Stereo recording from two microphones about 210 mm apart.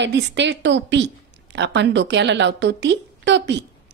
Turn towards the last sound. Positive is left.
turn(degrees=-55)  # may be behind; listen again after turning